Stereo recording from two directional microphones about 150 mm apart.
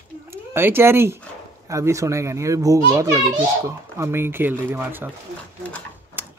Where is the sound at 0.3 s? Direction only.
15° right (ahead or behind).